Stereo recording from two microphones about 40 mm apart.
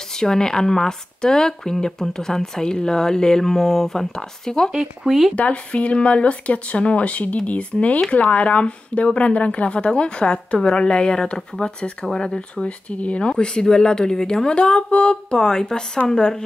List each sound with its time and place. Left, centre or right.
0.1 s speech: centre
4.7 s speech: centre
5.3 s speech: left; by 12.4 s centre
12.4 s speech: left